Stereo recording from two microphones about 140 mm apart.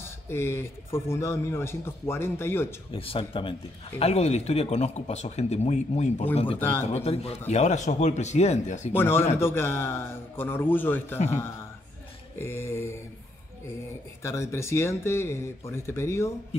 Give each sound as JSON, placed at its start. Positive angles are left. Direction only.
{"t": 0.0, "sound": "speech", "side_deg": 15}
{"t": 2.9, "sound": "speech", "side_deg": 40}
{"t": 6.6, "sound": "speech", "side_deg": 15}
{"t": 6.9, "sound": "speech", "side_deg": 45}
{"t": 8.9, "sound": "speech", "side_deg": 15}
{"t": 12.4, "sound": "speech", "side_deg": 15}
{"t": 14.2, "sound": "speech", "side_deg": 20}